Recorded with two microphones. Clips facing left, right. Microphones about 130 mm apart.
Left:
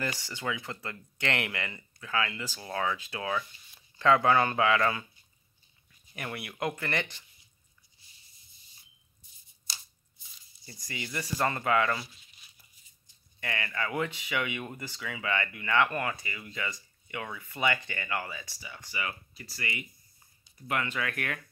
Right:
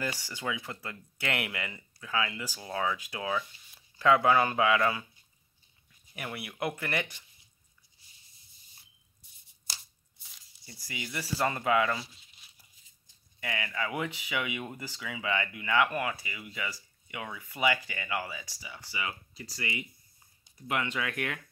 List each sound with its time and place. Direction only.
0.0 s speech: 10° right (ahead or behind)
6.1 s speech: 5° right (ahead or behind)
10.6 s speech: 5° right (ahead or behind)
13.4 s speech: 10° right (ahead or behind)